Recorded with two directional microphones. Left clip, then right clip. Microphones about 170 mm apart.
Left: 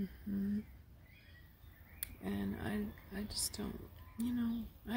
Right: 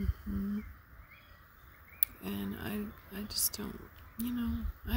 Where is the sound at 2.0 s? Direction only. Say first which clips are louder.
Right 2 dB; 10° right (ahead or behind).